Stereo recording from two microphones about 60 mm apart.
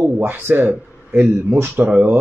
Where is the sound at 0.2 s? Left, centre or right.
Right.